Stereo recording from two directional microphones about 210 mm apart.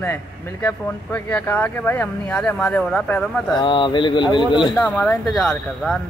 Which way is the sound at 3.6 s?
25° left (ahead or behind).